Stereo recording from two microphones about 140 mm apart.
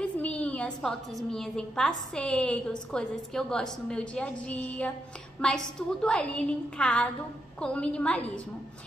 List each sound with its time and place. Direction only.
0.0 s a woman's voice: 10° left (ahead or behind)